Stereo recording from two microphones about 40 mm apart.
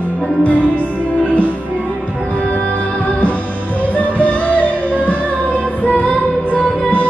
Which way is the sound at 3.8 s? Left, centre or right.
Left.